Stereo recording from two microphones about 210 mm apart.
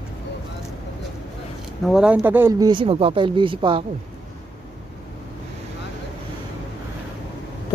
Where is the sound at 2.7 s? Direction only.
25° right (ahead or behind).